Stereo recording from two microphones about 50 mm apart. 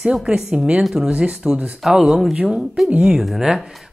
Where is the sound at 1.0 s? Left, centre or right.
Centre.